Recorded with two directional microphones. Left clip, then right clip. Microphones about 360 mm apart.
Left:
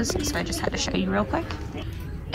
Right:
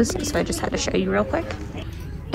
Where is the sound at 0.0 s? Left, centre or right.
Centre.